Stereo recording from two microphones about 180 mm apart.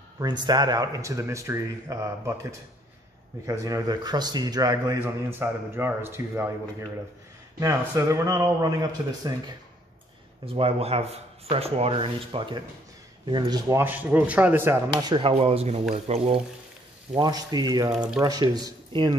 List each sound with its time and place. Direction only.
0.2 s a man's voice: 25° right (ahead or behind)
7.6 s speech: 15° right (ahead or behind)
10.4 s speech: 30° right (ahead or behind); by 14.8 s 10° right (ahead or behind)
15.0 s a man's voice: 25° right (ahead or behind)
17.9 s speech: 5° right (ahead or behind)
18.2 s a man's voice: 20° right (ahead or behind)